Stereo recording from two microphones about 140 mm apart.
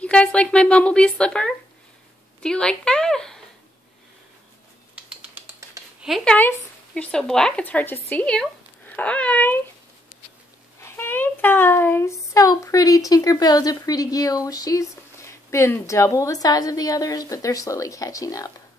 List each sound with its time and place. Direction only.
0.0 s speech: 10° left (ahead or behind)
4.9 s typing: 10° right (ahead or behind)
6.0 s speech: centre (ahead or behind)
6.3 s speech: 10° left (ahead or behind)
10.8 s a child's voice: 15° left (ahead or behind)